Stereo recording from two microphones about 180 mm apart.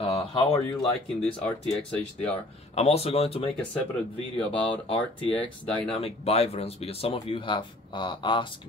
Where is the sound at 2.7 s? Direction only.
35° left (ahead or behind).